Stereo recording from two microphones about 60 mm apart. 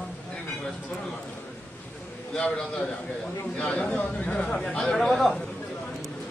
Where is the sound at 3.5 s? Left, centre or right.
Left.